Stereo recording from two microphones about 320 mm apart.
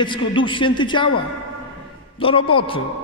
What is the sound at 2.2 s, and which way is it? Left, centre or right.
Speech, centre.